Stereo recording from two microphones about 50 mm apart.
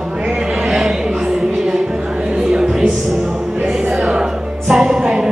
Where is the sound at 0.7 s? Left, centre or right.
Centre.